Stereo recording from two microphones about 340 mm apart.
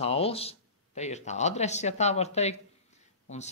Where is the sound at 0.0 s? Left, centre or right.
Centre.